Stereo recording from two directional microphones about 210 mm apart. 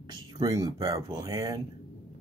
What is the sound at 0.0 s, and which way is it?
Speech, 20° right (ahead or behind).